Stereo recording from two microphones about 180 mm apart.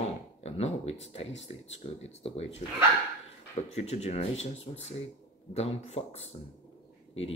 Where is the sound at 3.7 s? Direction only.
40° left (ahead or behind).